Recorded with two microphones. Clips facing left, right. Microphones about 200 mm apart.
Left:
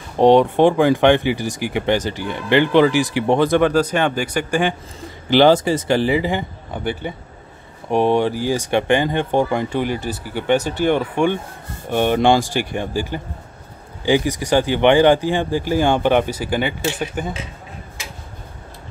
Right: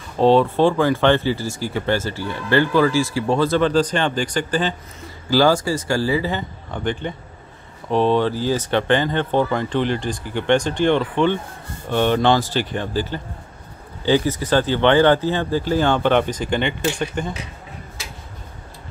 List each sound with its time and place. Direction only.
0.2 s speech: 15° left (ahead or behind)
5.3 s speech: 20° left (ahead or behind); by 17.3 s 5° left (ahead or behind)